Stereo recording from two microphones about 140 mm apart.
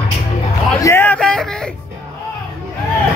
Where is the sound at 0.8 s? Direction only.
15° left (ahead or behind).